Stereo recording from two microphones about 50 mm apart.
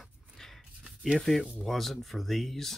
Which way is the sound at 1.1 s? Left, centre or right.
Centre.